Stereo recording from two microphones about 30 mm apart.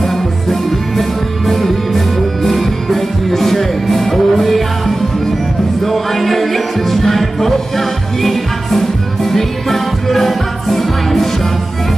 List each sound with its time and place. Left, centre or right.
0.0 s music: centre